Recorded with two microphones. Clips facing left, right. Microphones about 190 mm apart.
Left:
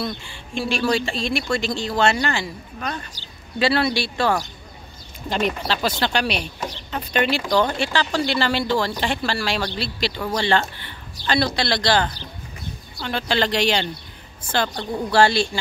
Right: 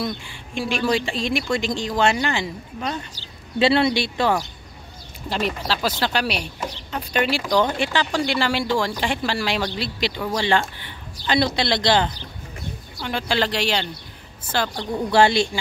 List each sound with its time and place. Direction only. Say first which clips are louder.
0.0 s speech: right 1 dB; 15° right (ahead or behind)
5.3 s speech: left 2 dB; 5° right (ahead or behind); by 12.1 s 20° right (ahead or behind)
13.0 s speech: left 1 dB; 10° right (ahead or behind)
15.0 s speech: right 1 dB; 20° right (ahead or behind)